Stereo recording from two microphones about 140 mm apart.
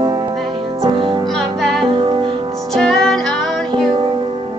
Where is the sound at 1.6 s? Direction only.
Centre (ahead or behind).